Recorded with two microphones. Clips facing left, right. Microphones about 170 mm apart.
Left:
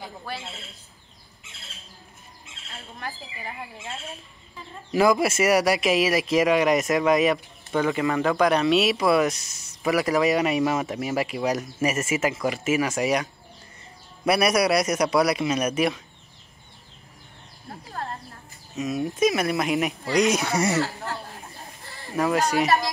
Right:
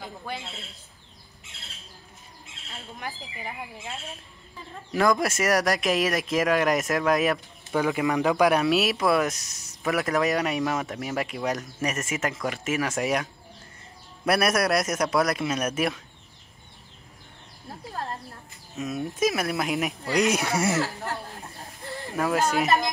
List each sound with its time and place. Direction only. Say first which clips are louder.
0.3 s speech: even; 20° right (ahead or behind)
2.7 s speech: left 1 dB; 20° right (ahead or behind)
3.8 s speech: left 1 dB; centre (ahead or behind)
18.8 s speech: left 3 dB; centre (ahead or behind)
22.1 s speech: left 2 dB; centre (ahead or behind)